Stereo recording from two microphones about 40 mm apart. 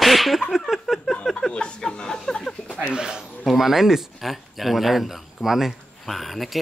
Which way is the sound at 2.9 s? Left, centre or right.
Centre.